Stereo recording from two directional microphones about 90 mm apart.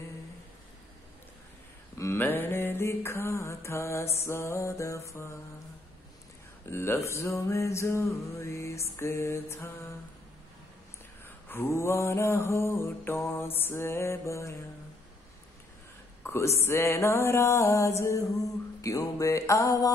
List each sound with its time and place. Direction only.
2.0 s mantra: 25° left (ahead or behind)
6.7 s music: 25° left (ahead or behind)
11.2 s mantra: 25° left (ahead or behind)
16.3 s music: 30° left (ahead or behind)